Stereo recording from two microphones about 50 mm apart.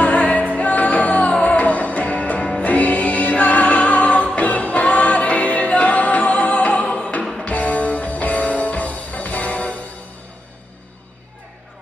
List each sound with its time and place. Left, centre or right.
0.0 s music: left